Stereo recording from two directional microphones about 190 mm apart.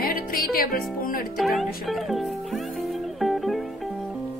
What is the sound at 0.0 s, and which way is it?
Music, 50° left (ahead or behind).